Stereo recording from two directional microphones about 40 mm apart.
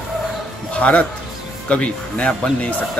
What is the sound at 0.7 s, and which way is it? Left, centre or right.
A man's voice, left.